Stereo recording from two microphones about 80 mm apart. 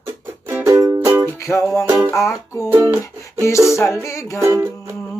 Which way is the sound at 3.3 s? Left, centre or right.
Left.